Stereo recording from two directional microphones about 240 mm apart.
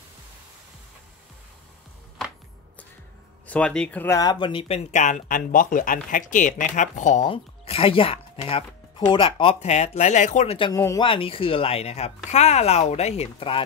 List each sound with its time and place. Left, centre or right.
3.4 s speech: centre; by 13.7 s left